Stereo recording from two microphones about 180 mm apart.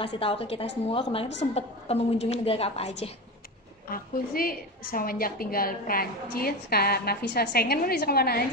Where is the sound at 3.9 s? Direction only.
55° left (ahead or behind).